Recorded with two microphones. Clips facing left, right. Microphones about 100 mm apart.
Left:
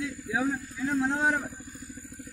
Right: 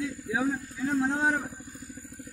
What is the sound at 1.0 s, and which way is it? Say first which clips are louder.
Speech: even; 35° right (ahead or behind).